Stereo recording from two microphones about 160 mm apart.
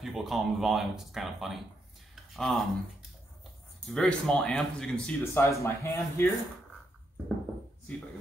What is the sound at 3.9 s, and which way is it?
Speech, 5° left (ahead or behind).